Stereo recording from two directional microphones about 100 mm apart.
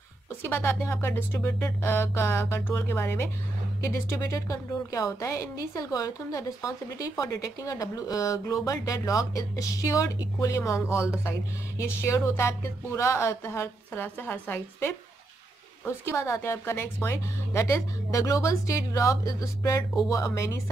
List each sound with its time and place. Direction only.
0.4 s a woman's voice: 25° left (ahead or behind)